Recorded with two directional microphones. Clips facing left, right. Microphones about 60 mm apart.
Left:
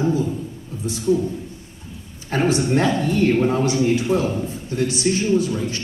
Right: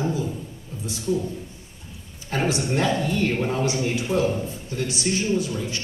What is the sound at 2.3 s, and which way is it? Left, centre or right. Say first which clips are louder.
Speech: left 5 dB; left.